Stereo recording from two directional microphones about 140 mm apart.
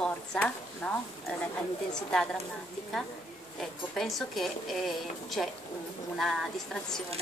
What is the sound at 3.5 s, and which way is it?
Speech, centre (ahead or behind).